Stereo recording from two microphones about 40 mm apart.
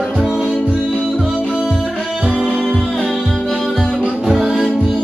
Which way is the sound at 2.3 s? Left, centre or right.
Right.